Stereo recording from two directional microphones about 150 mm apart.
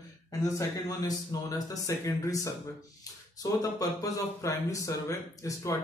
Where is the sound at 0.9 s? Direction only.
25° left (ahead or behind).